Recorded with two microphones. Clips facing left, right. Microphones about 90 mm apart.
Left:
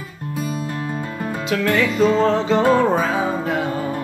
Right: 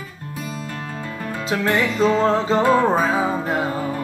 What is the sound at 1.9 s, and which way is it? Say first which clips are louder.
Music: left 1 dB; 35° right (ahead or behind).